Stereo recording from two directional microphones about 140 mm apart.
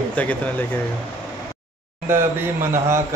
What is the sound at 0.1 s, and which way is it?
Speech, 10° left (ahead or behind).